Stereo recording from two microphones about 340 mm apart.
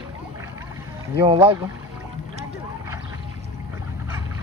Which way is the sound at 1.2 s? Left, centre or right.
Centre.